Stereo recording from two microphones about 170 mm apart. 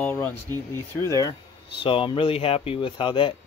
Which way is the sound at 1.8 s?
30° left (ahead or behind).